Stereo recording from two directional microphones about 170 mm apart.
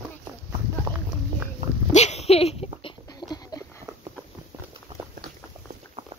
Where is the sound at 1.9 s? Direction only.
40° left (ahead or behind).